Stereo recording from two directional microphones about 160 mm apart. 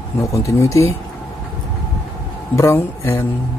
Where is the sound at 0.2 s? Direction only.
20° left (ahead or behind).